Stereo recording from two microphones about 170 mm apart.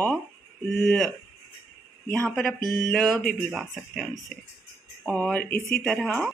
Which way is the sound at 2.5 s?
25° right (ahead or behind).